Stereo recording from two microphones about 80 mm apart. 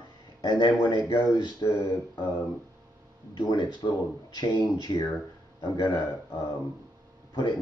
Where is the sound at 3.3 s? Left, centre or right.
Left.